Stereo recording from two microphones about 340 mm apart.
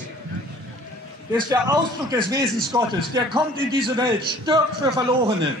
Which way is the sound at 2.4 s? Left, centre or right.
Centre.